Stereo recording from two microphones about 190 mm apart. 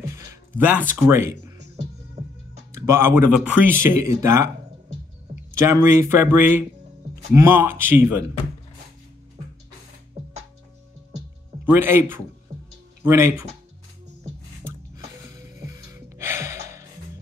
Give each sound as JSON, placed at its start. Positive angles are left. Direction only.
{"t": 0.1, "sound": "a sound", "side_deg": -10}
{"t": 1.0, "sound": "speech", "side_deg": -15}
{"t": 2.7, "sound": "speech", "side_deg": -15}
{"t": 5.7, "sound": "speech", "side_deg": -15}
{"t": 11.6, "sound": "speech", "side_deg": -10}
{"t": 15.3, "sound": "music", "side_deg": -15}